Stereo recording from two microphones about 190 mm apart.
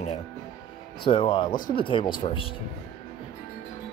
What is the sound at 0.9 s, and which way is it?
Speech, 25° left (ahead or behind).